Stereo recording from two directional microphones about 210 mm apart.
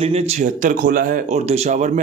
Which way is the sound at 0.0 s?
30° right (ahead or behind).